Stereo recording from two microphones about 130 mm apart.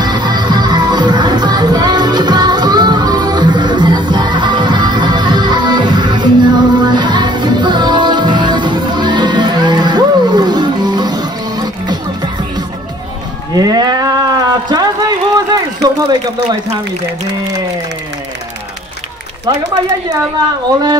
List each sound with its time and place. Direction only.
0.0 s music: 35° right (ahead or behind)
13.5 s sheep: 30° right (ahead or behind)